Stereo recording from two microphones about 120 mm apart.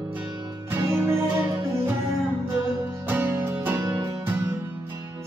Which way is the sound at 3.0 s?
20° right (ahead or behind).